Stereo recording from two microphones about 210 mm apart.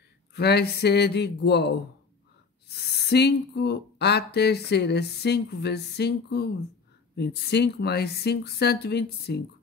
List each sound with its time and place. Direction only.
0.3 s speech: 50° left (ahead or behind)